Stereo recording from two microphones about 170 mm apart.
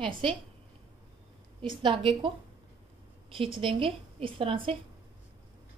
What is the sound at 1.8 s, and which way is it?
Speech, 30° right (ahead or behind).